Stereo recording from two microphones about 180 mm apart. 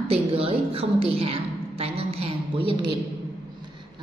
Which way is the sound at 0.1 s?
30° right (ahead or behind).